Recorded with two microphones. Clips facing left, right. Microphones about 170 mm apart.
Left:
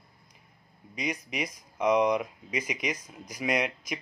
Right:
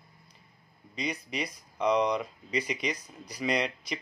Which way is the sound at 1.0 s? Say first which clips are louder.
Left 1 dB; 10° left (ahead or behind).